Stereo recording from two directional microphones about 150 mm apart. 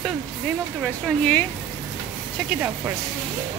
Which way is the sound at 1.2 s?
10° left (ahead or behind).